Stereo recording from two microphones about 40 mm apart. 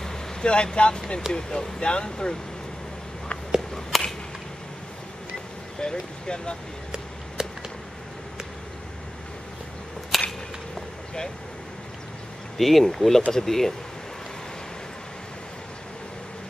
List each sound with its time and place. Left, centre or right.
0.0 s vehicle: centre
0.5 s speech: left
3.9 s whip: centre
5.8 s speech: left
7.4 s a sound: centre
10.1 s whip: centre
12.5 s speech: centre